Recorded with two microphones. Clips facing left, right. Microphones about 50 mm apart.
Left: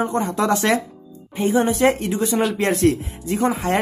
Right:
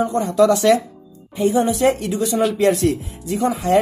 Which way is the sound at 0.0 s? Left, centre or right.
Left.